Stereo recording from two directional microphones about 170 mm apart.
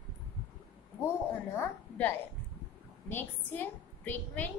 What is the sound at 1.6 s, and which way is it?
A woman's voice, 10° left (ahead or behind).